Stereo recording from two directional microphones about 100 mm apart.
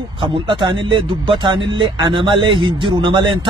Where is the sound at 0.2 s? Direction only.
55° right (ahead or behind).